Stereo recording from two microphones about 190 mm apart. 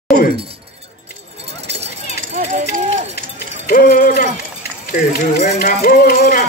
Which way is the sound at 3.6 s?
50° left (ahead or behind).